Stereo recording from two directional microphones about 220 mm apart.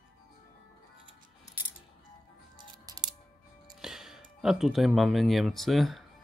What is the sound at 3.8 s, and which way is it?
Speech, centre (ahead or behind).